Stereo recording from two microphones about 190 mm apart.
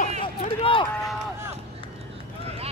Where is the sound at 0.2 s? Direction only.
30° left (ahead or behind).